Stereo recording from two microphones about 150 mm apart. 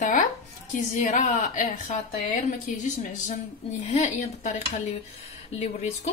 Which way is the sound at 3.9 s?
50° left (ahead or behind).